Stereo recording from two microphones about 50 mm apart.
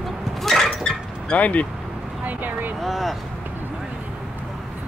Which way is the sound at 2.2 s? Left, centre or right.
Right.